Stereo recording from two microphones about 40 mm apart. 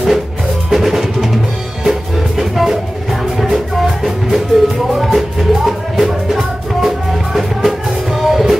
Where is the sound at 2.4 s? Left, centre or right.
Centre.